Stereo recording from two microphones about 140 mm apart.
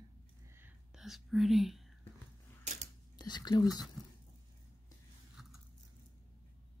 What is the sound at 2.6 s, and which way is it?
Creak, 55° right (ahead or behind).